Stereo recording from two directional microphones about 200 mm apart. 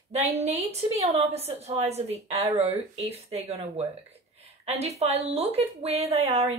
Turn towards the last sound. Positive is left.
turn(degrees=-30)  # may be behind; listen again after turning